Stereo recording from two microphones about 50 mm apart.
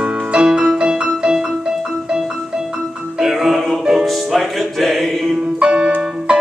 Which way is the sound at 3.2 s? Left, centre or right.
Centre.